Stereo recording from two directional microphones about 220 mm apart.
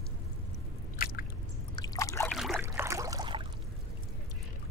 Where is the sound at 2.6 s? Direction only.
15° right (ahead or behind).